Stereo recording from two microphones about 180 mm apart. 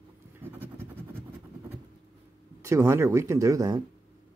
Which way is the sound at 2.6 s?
15° right (ahead or behind).